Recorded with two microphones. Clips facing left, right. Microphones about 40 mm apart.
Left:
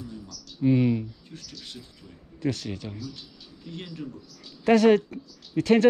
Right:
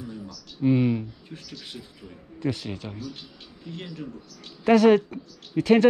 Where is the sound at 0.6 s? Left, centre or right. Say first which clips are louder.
Even; centre.